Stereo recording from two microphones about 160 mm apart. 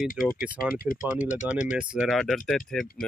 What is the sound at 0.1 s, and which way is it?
Speech, 60° left (ahead or behind).